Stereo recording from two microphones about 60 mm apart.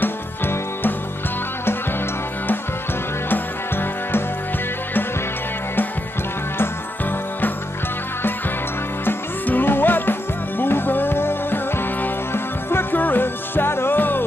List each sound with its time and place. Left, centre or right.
0.0 s music: left
3.3 s music: left
9.0 s music: left